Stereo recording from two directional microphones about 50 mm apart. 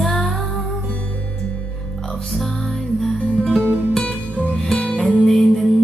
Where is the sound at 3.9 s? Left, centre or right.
Centre.